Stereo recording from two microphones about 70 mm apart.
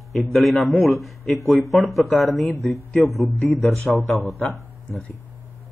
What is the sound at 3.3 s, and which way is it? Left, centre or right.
Speech, left.